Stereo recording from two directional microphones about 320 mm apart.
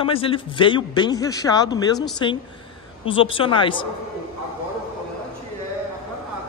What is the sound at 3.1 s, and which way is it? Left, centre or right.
Speech, centre.